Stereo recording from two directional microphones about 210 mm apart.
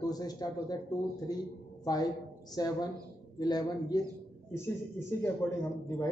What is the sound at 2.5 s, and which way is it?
A man's voice, 20° left (ahead or behind).